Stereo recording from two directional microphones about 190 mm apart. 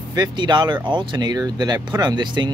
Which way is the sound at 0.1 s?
20° right (ahead or behind).